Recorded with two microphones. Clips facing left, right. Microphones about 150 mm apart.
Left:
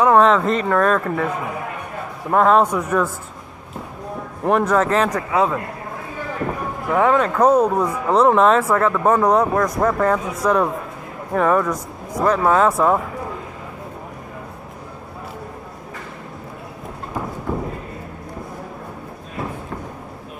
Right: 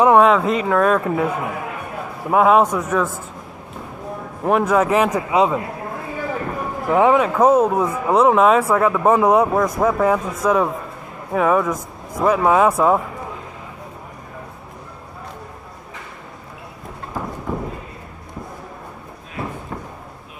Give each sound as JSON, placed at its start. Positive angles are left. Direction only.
{"t": 0.1, "sound": "speech", "side_deg": -5}
{"t": 4.4, "sound": "speech", "side_deg": -5}
{"t": 6.9, "sound": "speech", "side_deg": -15}
{"t": 17.5, "sound": "horse", "side_deg": 0}